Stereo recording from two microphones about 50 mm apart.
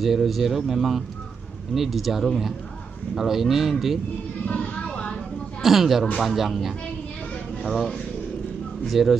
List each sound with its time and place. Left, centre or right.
0.0 s speech: centre
4.5 s a sound: left
5.6 s speech: centre